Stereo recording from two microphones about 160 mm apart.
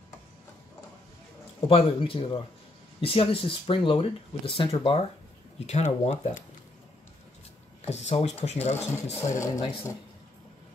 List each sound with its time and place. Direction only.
1.7 s speech: 35° left (ahead or behind)
7.8 s speech: 45° left (ahead or behind)
9.2 s speech: 20° left (ahead or behind)